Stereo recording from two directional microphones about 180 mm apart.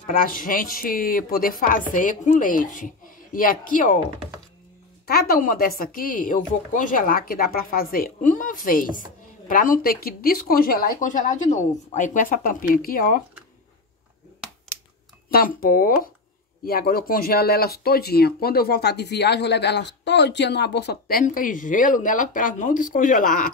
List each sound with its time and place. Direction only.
0.0 s speech: 50° left (ahead or behind)
5.0 s speech: 55° left (ahead or behind)
15.2 s speech: 55° left (ahead or behind)